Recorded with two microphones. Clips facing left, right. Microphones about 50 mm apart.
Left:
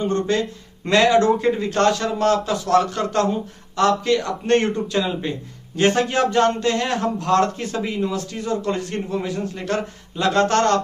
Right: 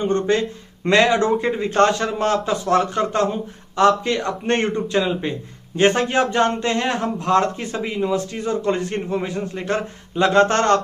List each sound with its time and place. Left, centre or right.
0.0 s a man's voice: right